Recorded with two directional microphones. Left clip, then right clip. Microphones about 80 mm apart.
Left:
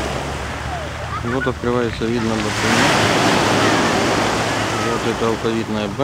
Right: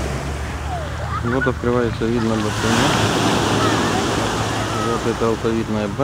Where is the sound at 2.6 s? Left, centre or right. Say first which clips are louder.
Left 4 dB; left.